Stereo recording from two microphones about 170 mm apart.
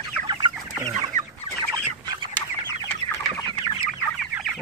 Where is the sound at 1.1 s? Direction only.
50° right (ahead or behind).